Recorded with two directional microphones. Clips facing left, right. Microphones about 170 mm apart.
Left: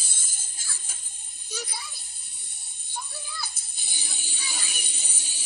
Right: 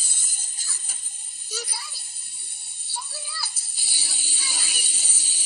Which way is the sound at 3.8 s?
15° left (ahead or behind).